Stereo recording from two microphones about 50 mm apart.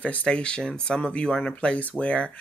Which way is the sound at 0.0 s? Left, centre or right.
Left.